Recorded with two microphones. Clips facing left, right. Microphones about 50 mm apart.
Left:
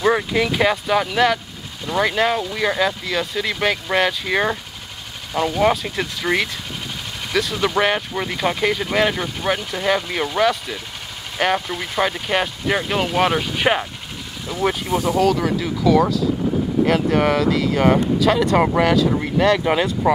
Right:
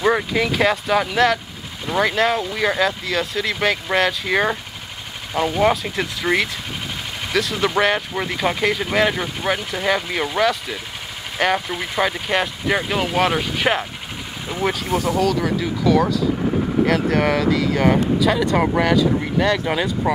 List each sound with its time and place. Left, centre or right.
0.0 s speech: centre
7.5 s speech: centre
14.5 s speech: right
15.0 s speech: centre